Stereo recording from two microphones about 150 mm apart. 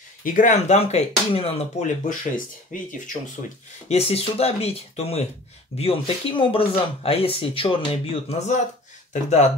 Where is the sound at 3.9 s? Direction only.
45° left (ahead or behind).